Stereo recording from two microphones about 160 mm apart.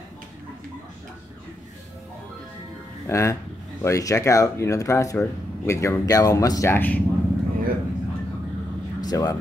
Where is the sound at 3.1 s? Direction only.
20° left (ahead or behind).